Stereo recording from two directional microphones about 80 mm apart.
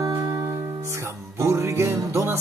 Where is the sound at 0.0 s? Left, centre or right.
Right.